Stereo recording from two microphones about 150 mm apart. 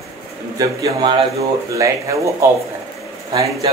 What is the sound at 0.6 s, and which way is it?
A man's voice, 25° right (ahead or behind).